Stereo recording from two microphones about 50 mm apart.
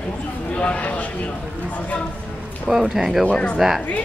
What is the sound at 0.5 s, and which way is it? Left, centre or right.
Speech, left.